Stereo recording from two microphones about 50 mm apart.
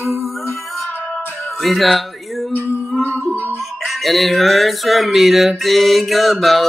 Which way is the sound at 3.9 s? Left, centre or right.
Centre.